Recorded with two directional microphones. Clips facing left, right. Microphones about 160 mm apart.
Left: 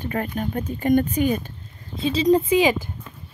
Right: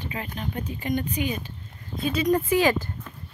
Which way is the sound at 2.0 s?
25° left (ahead or behind).